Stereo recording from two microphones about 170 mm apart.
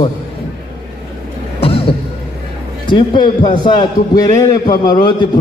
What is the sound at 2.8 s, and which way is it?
A man's voice, 25° left (ahead or behind).